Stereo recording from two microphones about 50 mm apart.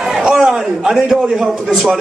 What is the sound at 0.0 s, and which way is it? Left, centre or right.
A man's voice, centre.